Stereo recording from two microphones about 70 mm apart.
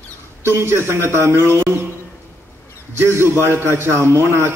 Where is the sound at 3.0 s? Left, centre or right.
Right.